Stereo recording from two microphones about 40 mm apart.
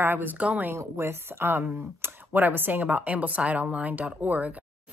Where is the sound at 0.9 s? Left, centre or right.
Right.